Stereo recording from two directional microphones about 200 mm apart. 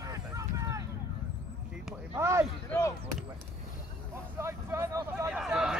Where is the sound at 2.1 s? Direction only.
15° right (ahead or behind).